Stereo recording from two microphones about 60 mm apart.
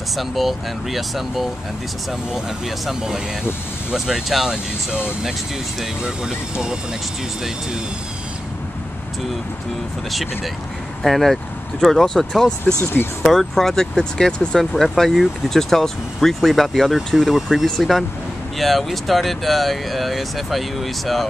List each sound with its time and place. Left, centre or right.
0.1 s speech: centre
2.9 s speech: centre
6.0 s speech: centre
11.0 s speech: centre
12.8 s speech: left
13.3 s speech: centre
17.6 s speech: centre